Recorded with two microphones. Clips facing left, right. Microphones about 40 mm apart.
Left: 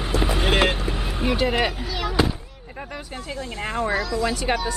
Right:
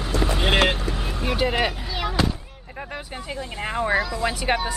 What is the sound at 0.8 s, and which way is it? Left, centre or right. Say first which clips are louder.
Vehicle: left 2 dB; centre.